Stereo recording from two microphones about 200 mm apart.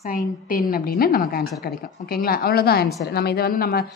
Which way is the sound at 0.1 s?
45° left (ahead or behind).